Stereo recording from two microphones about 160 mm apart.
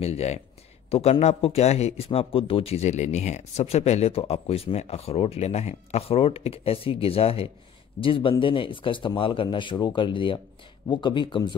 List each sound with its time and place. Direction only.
0.0 s speech: 40° left (ahead or behind)